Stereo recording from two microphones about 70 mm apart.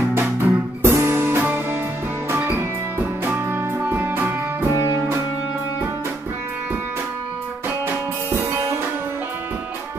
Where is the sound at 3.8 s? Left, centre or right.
Right.